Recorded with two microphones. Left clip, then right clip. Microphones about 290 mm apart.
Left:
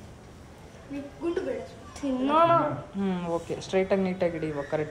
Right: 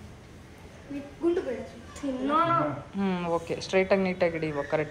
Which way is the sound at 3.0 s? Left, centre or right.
Centre.